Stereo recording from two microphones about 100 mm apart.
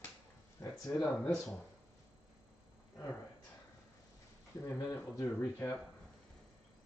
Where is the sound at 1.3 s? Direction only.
5° left (ahead or behind).